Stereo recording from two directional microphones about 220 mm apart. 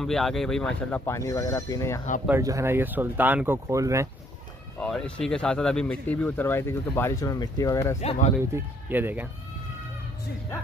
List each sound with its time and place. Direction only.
0.0 s speech: centre (ahead or behind)
2.2 s speech: 10° right (ahead or behind)
4.7 s speech: 5° left (ahead or behind)
8.0 s speech: 30° left (ahead or behind)
8.8 s speech: 10° right (ahead or behind)